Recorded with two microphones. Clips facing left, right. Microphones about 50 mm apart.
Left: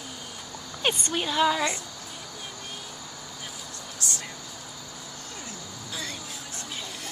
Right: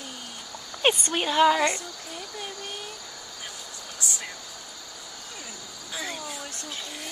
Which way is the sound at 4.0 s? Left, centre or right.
Centre.